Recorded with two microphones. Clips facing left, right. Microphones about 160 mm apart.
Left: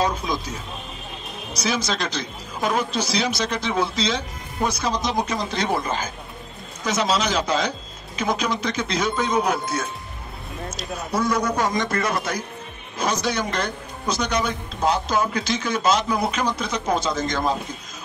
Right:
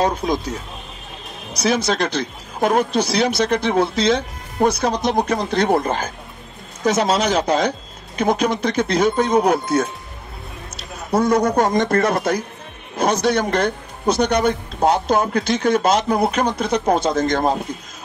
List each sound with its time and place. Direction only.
0.0 s speech: 45° right (ahead or behind)
1.6 s speech: 55° right (ahead or behind)
11.1 s speech: 50° right (ahead or behind)
12.9 s speech: 65° right (ahead or behind)